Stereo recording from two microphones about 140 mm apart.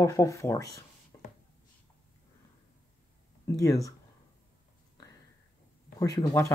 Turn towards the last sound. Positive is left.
turn(degrees=25)  # may be behind; listen again after turning